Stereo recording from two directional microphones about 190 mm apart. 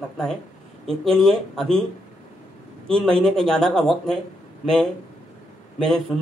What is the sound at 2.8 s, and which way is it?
Speech, 5° left (ahead or behind).